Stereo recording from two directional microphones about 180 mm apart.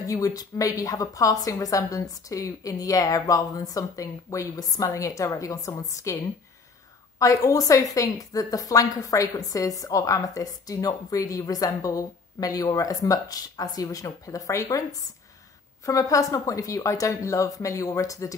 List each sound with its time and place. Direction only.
0.0 s a woman's voice: 20° left (ahead or behind)
7.2 s a woman's voice: 20° left (ahead or behind)